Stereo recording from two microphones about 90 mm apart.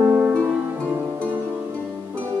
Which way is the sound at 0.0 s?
20° right (ahead or behind).